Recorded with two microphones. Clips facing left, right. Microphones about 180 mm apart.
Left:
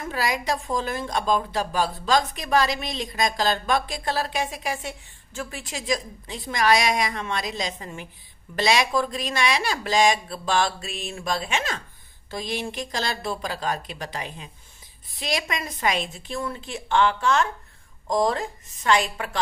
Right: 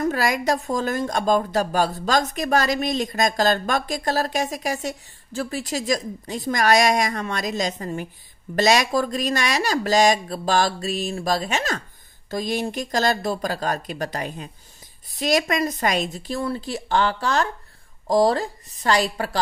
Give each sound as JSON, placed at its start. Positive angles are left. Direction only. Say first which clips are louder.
{"t": 0.0, "sound": "a woman's voice", "louder": "right 5 dB", "side_deg": -45}